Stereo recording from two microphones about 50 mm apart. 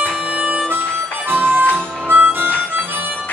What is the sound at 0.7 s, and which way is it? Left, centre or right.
Harmonica, right.